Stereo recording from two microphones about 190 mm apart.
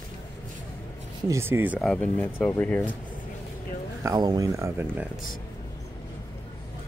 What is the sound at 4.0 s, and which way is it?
Speech, 20° right (ahead or behind).